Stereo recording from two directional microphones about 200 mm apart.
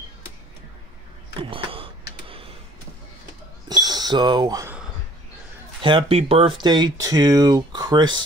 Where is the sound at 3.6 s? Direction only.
20° right (ahead or behind).